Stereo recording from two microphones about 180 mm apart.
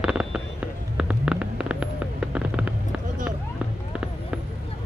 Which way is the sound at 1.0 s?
5° right (ahead or behind).